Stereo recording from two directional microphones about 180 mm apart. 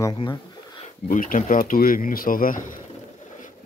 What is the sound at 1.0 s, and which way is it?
Speech, 50° left (ahead or behind).